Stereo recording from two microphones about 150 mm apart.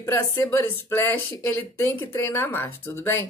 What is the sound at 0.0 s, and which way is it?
Speech, 15° left (ahead or behind).